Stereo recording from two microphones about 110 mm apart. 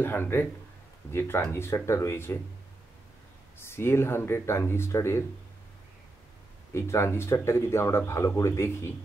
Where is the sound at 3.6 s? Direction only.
20° left (ahead or behind).